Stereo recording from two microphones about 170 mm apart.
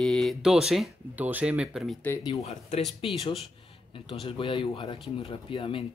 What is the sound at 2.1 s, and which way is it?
Speech, 20° left (ahead or behind).